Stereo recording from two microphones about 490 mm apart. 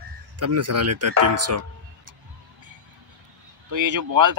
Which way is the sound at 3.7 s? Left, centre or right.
Right.